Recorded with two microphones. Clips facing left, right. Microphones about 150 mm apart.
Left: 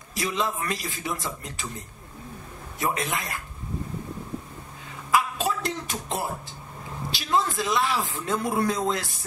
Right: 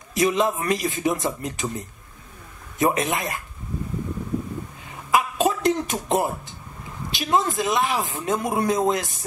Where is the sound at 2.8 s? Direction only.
20° right (ahead or behind).